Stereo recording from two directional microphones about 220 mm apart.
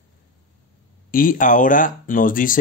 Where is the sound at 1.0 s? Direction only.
40° left (ahead or behind).